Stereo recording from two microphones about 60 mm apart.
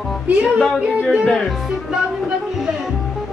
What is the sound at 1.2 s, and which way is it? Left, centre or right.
Speech, centre.